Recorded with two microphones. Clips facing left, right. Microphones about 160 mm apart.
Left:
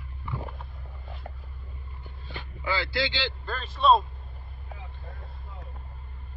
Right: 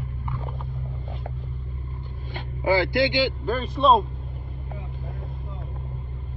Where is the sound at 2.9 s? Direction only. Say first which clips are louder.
Right 8 dB; 20° right (ahead or behind).